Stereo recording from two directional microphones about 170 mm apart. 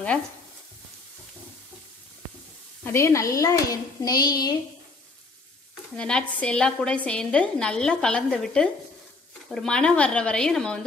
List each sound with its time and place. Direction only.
2.8 s speech: 15° left (ahead or behind)
5.9 s a woman's voice: 5° left (ahead or behind)